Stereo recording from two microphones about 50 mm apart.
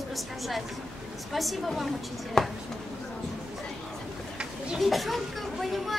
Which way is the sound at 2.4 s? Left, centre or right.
Centre.